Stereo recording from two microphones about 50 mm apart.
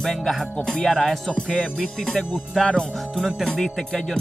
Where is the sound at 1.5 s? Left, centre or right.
Centre.